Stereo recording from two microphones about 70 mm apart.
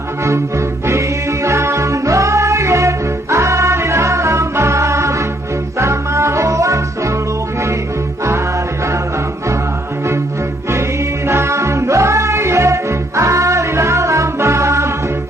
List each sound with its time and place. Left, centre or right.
0.2 s music: right
11.2 s music: right